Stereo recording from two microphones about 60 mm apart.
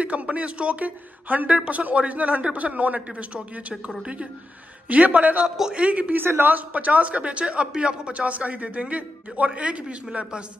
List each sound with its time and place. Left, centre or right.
0.0 s a man's voice: right
5.6 s a man's voice: centre
5.9 s a man's voice: right
6.2 s a man's voice: right; by 10.4 s centre